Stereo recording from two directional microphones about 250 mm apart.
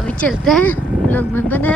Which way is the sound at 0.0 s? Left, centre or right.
Centre.